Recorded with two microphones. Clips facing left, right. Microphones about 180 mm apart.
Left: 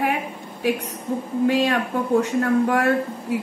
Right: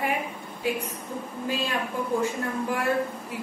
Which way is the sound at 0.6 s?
85° left.